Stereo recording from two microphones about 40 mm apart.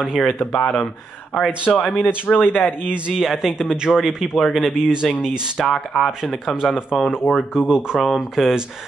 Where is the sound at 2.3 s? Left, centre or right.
Left.